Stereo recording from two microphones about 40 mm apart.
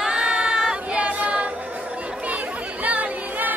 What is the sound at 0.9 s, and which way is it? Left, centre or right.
Choir, right.